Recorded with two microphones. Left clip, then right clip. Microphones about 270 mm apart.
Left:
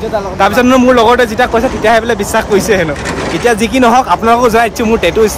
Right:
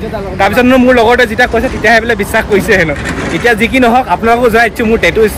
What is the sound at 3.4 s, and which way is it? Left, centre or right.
Speech, centre.